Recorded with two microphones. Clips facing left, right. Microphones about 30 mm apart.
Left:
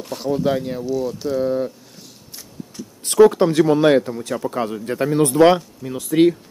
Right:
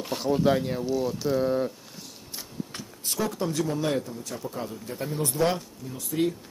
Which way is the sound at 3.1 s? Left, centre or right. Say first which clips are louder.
Left 16 dB; left.